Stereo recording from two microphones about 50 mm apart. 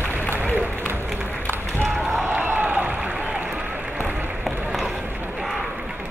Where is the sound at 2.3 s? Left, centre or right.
Right.